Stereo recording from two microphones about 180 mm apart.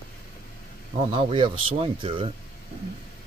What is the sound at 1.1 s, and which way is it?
Speech, 30° right (ahead or behind).